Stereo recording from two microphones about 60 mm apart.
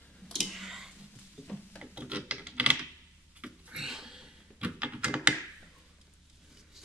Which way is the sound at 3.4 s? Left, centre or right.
Centre.